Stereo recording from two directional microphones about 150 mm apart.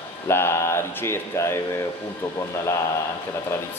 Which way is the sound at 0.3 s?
15° left (ahead or behind).